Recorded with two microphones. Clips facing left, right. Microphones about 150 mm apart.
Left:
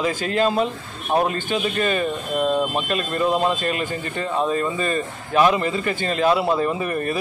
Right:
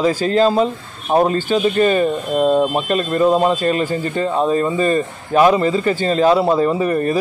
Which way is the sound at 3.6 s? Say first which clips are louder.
Right 7 dB; 35° right (ahead or behind).